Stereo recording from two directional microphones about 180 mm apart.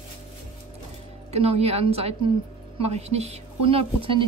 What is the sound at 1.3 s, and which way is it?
Speech, 35° right (ahead or behind).